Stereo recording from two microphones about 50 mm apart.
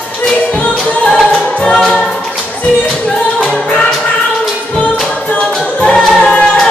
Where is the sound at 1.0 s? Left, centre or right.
Centre.